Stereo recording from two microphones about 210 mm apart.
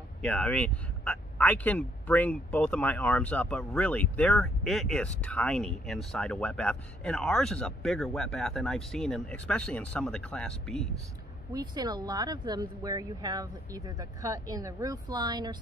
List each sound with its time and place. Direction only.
0.2 s speech: 5° left (ahead or behind)
11.5 s speech: 20° right (ahead or behind)